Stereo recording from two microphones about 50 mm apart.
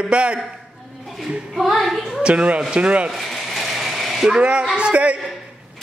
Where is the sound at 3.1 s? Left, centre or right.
Centre.